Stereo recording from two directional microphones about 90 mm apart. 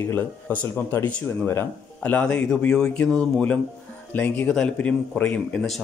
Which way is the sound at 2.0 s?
15° left (ahead or behind).